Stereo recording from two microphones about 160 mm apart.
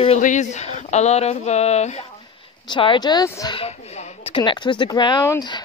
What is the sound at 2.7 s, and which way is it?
Speech, 30° left (ahead or behind).